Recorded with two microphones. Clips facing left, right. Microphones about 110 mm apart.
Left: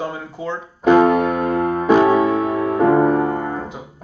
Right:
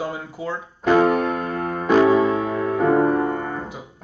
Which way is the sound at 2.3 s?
5° left (ahead or behind).